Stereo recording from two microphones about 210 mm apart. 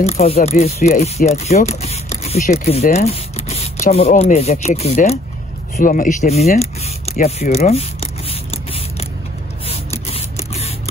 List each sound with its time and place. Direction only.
0.0 s speech: 30° left (ahead or behind)
7.2 s a sound: 35° left (ahead or behind)
10.0 s mechanisms: 30° left (ahead or behind)